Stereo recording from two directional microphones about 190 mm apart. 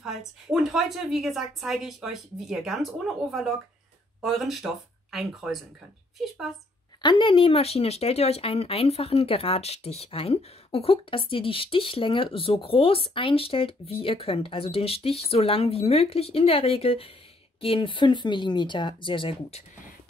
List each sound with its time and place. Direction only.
0.5 s speech: 5° right (ahead or behind)
7.0 s speech: 25° left (ahead or behind)